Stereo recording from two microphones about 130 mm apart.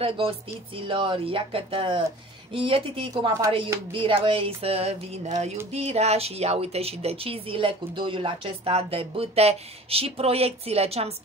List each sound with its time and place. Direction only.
0.0 s speech: 45° right (ahead or behind)
3.1 s speech: 30° right (ahead or behind)
3.9 s speech: 40° right (ahead or behind)